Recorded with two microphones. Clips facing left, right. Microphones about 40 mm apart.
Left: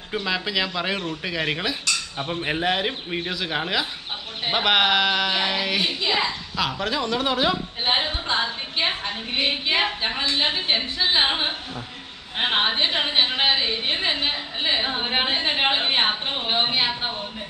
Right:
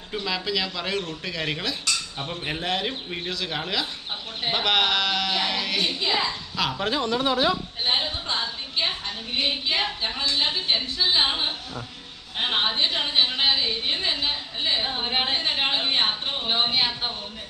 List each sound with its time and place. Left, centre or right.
0.1 s speech: centre
6.5 s speech: centre
7.1 s speech: left
7.8 s a woman's voice: left